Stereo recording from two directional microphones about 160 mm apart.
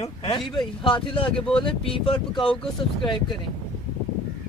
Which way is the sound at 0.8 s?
30° left (ahead or behind).